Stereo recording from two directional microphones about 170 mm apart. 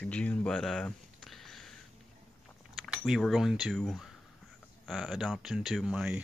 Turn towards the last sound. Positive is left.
turn(degrees=-5)  # may be behind; listen again after turning